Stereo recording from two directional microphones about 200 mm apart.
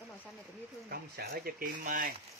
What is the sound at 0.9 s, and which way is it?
Speech, 50° right (ahead or behind).